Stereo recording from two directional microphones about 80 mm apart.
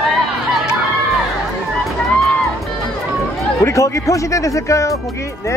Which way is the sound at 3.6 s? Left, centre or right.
Left.